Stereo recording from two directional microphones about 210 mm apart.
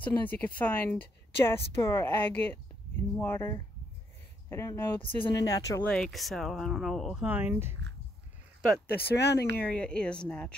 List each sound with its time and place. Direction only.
0.0 s a woman's voice: 10° left (ahead or behind)
5.8 s speech: 5° left (ahead or behind)
8.8 s speech: 50° left (ahead or behind)
9.6 s speech: 5° left (ahead or behind)